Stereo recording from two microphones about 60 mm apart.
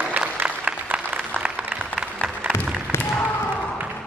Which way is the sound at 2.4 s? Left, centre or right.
Right.